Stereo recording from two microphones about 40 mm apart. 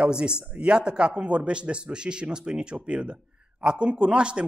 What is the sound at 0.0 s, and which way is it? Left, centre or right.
A man's voice, right.